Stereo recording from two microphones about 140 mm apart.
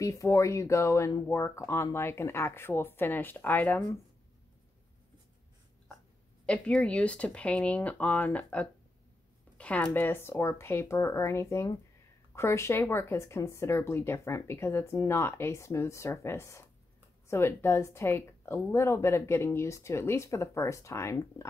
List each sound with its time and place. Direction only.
0.0 s speech: 20° left (ahead or behind)
6.4 s speech: 10° left (ahead or behind)
9.6 s a sound: 10° left (ahead or behind)
9.9 s speech: 15° left (ahead or behind)